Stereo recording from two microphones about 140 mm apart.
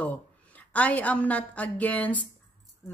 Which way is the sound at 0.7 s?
10° left (ahead or behind).